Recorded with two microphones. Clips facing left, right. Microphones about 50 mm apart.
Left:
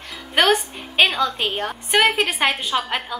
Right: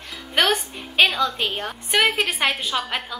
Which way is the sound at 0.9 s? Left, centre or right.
Centre.